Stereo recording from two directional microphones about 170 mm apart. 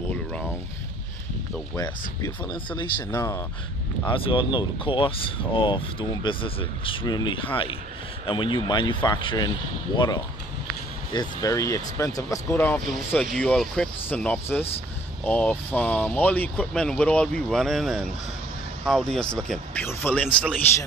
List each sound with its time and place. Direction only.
1.8 s speech: 25° left (ahead or behind)
3.1 s speech: 15° left (ahead or behind)
4.1 s speech: 30° left (ahead or behind); by 20.5 s 10° left (ahead or behind)